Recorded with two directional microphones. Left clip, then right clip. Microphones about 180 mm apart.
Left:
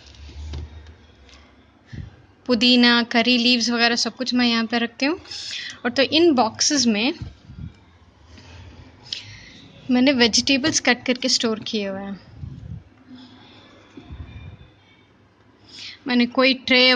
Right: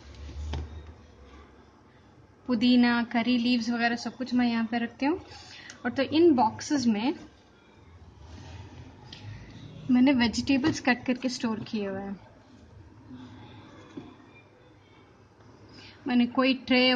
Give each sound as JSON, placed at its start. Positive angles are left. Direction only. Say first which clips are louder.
{"t": 2.4, "sound": "a woman's voice", "louder": "left 8 dB", "side_deg": 25}
{"t": 9.1, "sound": "a sound", "louder": "left 17 dB", "side_deg": 20}
{"t": 9.8, "sound": "speech", "louder": "left 7 dB", "side_deg": 15}
{"t": 15.8, "sound": "speech", "louder": "left 6 dB", "side_deg": 15}